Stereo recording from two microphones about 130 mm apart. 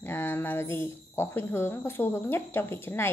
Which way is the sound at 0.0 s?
15° left (ahead or behind).